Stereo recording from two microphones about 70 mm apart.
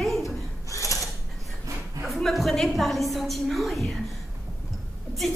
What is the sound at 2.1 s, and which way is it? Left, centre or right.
A woman's voice, centre.